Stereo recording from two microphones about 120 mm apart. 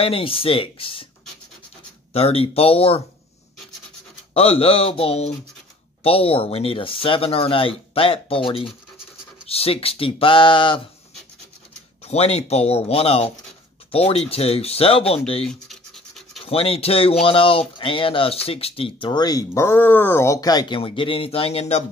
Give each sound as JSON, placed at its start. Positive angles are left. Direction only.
{"t": 0.0, "sound": "speech", "side_deg": 50}
{"t": 2.1, "sound": "speech", "side_deg": 55}
{"t": 4.3, "sound": "speech", "side_deg": 55}
{"t": 12.0, "sound": "speech", "side_deg": 60}
{"t": 15.4, "sound": "scratch", "side_deg": 5}
{"t": 16.4, "sound": "speech", "side_deg": 50}